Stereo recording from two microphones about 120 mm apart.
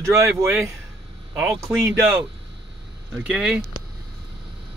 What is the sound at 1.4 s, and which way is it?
Speech, 20° right (ahead or behind).